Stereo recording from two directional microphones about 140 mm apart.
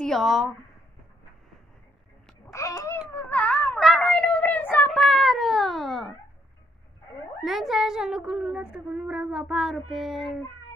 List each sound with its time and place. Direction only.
0.0 s a woman's voice: centre (ahead or behind)
2.5 s a sound: 20° left (ahead or behind); by 6.1 s centre (ahead or behind)
7.4 s speech: centre (ahead or behind)